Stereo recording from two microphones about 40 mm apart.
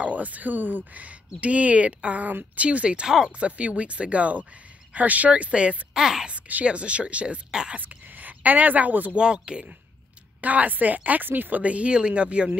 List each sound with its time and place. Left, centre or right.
0.1 s speech: right
1.0 s speech: right
5.9 s a woman's voice: centre
6.6 s speech: right
7.7 s speech: right
9.1 s speech: right
10.4 s speech: right
11.6 s speech: right